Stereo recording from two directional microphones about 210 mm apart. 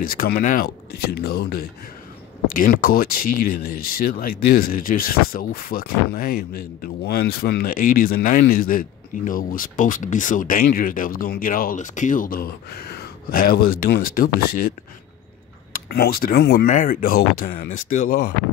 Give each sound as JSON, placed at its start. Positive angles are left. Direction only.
{"t": 0.0, "sound": "speech", "side_deg": 45}
{"t": 15.7, "sound": "speech", "side_deg": 45}
{"t": 16.6, "sound": "speech", "side_deg": 40}